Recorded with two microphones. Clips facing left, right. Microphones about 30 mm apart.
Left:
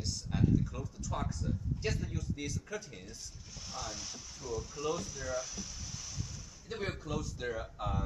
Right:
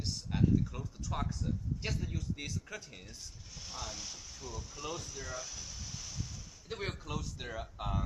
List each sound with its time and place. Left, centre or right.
0.0 s a sound: centre
0.7 s a man's voice: centre
6.7 s a man's voice: centre
7.8 s speech: right